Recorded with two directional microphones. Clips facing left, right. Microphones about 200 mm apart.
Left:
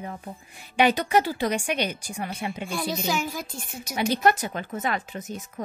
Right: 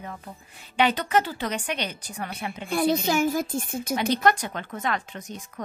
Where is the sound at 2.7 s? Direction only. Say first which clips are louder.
Right 7 dB; 55° right (ahead or behind).